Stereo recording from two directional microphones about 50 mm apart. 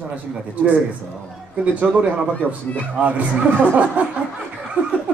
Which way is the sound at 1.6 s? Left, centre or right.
Right.